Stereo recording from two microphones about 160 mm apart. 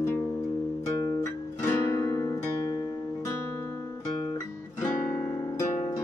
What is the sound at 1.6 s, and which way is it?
Music, 20° left (ahead or behind).